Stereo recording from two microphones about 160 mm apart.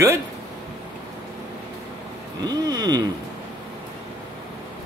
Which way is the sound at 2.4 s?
25° right (ahead or behind).